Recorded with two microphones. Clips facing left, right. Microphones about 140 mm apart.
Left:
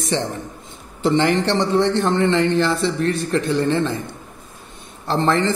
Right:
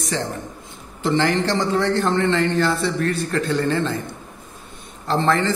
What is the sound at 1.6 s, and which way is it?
A man's voice, 20° left (ahead or behind).